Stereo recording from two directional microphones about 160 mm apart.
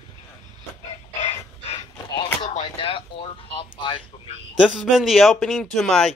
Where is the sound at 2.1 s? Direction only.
35° left (ahead or behind).